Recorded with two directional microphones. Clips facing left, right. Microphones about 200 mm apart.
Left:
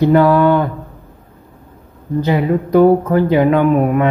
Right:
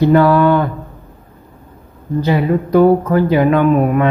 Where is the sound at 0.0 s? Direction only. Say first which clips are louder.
Even; 15° left (ahead or behind).